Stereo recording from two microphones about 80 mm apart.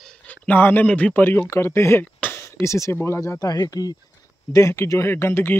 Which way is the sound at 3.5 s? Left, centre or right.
Left.